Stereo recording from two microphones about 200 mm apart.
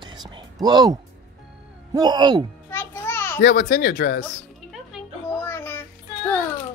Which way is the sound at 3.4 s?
40° left (ahead or behind).